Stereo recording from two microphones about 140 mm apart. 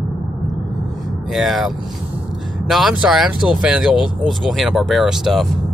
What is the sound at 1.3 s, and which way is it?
Speech, centre (ahead or behind).